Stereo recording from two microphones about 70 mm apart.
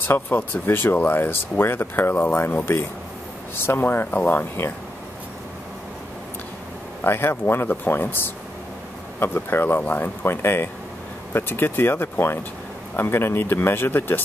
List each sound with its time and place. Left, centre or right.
0.0 s speech: left
7.0 s speech: left
9.2 s speech: left